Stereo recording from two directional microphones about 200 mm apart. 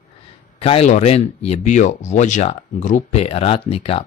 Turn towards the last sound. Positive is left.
turn(degrees=30)  # may be behind; listen again after turning